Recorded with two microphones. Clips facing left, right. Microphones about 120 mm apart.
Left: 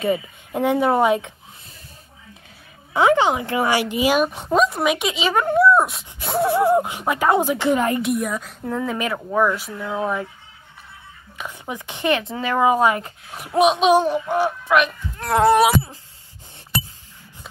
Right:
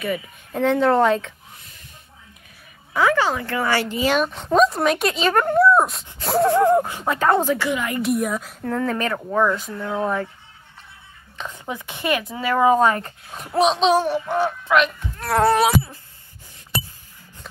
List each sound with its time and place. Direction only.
0.0 s speech: 25° left (ahead or behind)
0.6 s speech: 15° left (ahead or behind)
2.9 s a woman's voice: 20° left (ahead or behind); by 6.5 s centre (ahead or behind)
6.5 s speech: 15° left (ahead or behind)
7.7 s a woman's voice: 35° left (ahead or behind)
8.0 s a woman's voice: centre (ahead or behind)
8.6 s speech: 10° left (ahead or behind)
11.3 s speech: 15° left (ahead or behind)